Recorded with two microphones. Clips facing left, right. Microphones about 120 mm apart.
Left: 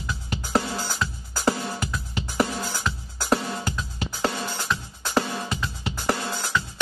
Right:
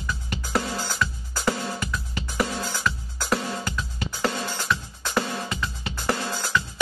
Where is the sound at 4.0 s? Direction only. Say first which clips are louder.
Even; 15° left (ahead or behind).